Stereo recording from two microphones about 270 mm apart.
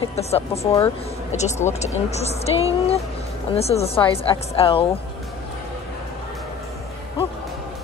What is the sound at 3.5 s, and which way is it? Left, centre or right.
Speech, left.